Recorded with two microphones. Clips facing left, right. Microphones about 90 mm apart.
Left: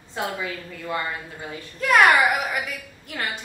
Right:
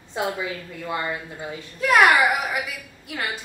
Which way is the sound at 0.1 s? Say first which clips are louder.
Right 2 dB; 20° right (ahead or behind).